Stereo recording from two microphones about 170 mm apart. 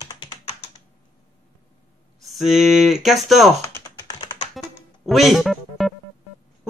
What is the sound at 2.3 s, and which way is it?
Speech, centre (ahead or behind).